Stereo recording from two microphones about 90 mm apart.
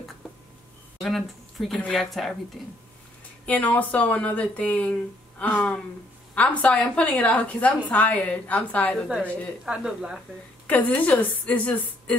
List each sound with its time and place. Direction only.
1.0 s speech: centre (ahead or behind)
3.4 s speech: 20° left (ahead or behind)
9.7 s speech: 5° right (ahead or behind)
10.7 s speech: 15° left (ahead or behind)